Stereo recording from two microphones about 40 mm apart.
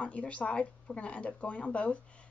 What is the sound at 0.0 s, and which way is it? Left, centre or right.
A woman's voice, left.